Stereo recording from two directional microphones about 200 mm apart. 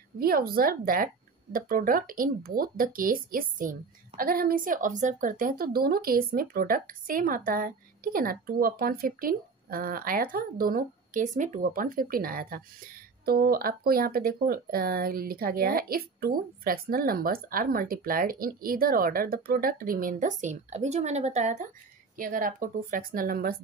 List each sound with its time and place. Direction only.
0.2 s a woman's voice: 50° right (ahead or behind)